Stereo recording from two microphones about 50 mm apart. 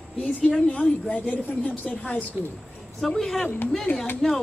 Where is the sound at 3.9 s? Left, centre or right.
Left.